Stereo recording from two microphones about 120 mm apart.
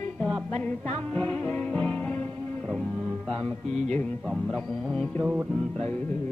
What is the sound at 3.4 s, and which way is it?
Music, 10° left (ahead or behind).